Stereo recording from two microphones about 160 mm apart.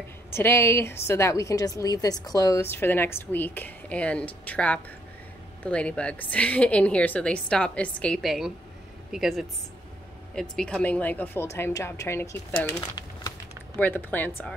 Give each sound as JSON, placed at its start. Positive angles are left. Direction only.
{"t": 0.3, "sound": "a woman's voice", "side_deg": 15}
{"t": 10.5, "sound": "a woman's voice", "side_deg": 5}
{"t": 13.7, "sound": "a woman's voice", "side_deg": 10}